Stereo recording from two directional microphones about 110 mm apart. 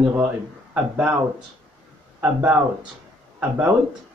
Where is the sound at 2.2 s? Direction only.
15° right (ahead or behind).